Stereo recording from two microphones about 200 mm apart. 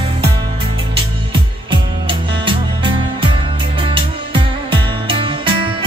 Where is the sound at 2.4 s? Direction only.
25° right (ahead or behind).